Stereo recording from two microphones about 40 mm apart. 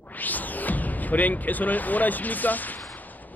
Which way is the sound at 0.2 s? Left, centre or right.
Left.